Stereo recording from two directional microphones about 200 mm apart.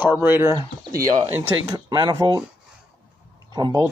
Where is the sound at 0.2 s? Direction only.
10° right (ahead or behind).